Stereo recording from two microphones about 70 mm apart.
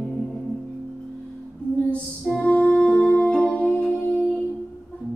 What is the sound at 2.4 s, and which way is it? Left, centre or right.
Music, left.